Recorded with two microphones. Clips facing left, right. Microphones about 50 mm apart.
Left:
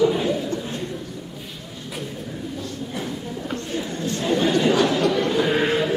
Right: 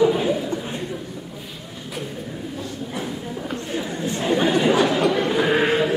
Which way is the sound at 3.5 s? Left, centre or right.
Centre.